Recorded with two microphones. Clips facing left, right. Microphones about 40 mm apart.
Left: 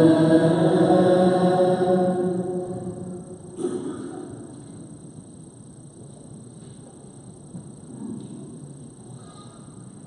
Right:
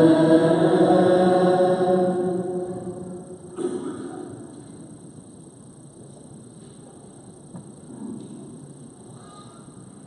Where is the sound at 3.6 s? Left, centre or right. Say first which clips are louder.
Even; right.